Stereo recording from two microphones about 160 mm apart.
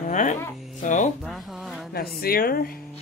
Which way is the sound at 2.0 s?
70° left (ahead or behind).